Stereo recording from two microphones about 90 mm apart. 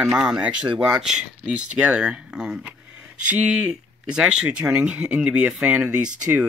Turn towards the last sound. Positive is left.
turn(degrees=-15)  # may be behind; listen again after turning